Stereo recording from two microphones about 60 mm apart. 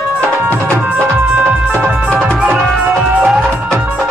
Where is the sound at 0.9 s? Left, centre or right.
Right.